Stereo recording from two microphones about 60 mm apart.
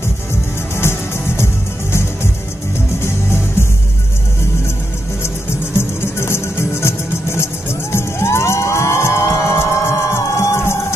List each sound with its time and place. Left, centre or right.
0.7 s music: left
5.8 s music: left